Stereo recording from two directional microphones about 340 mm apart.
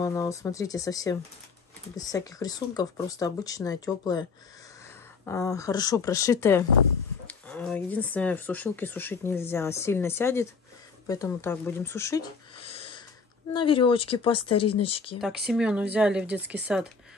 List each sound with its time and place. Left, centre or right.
0.0 s speech: centre
14.4 s speech: left
14.8 s speech: centre
15.1 s speech: centre